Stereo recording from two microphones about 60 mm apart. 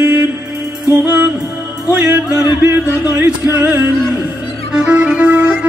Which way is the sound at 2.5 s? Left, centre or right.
Right.